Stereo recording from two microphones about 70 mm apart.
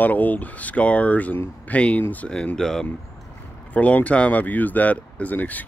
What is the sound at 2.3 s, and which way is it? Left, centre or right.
Speech, centre.